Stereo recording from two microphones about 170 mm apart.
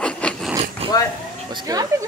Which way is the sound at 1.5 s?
20° right (ahead or behind).